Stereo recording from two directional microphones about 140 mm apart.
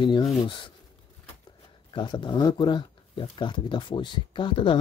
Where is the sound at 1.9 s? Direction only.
35° left (ahead or behind).